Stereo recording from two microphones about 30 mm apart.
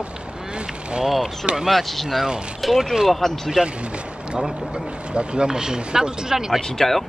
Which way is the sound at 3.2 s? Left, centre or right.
Centre.